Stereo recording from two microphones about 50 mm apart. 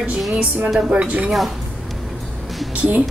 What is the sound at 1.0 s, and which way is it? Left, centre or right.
Speech, right.